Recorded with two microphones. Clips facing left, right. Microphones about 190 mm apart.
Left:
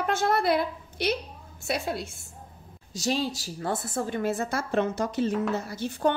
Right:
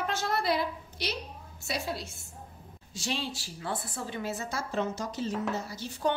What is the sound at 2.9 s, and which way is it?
A woman's voice, 40° left (ahead or behind).